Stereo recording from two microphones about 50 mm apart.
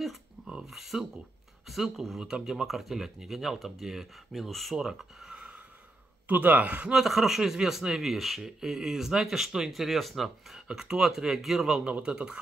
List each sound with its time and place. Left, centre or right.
0.5 s speech: centre
2.6 s speech: centre
5.3 s gasp: centre
6.2 s speech: right
6.9 s speech: centre
11.8 s speech: right